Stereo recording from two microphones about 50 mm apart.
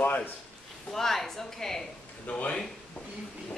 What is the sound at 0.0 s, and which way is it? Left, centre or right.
Speech, left.